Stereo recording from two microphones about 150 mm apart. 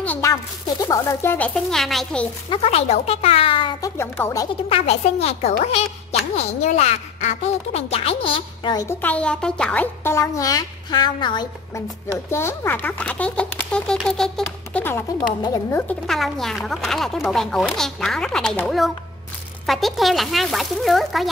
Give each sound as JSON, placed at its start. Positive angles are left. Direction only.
{"t": 0.0, "sound": "a sound", "side_deg": 10}
{"t": 0.3, "sound": "a child's voice", "side_deg": 25}
{"t": 1.5, "sound": "speech", "side_deg": 0}
{"t": 2.5, "sound": "speech", "side_deg": 45}
{"t": 4.0, "sound": "a child's voice", "side_deg": 20}
{"t": 4.6, "sound": "a woman's voice", "side_deg": 40}
{"t": 8.7, "sound": "a child's voice", "side_deg": 15}
{"t": 12.3, "sound": "speech", "side_deg": 15}
{"t": 15.4, "sound": "a child's voice", "side_deg": 25}
{"t": 15.9, "sound": "speech", "side_deg": 0}
{"t": 19.6, "sound": "speech", "side_deg": 0}